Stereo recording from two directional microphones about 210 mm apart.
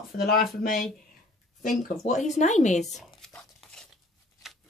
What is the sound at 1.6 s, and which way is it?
A woman's voice, 35° left (ahead or behind).